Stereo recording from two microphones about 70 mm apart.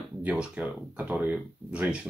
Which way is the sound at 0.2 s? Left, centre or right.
Centre.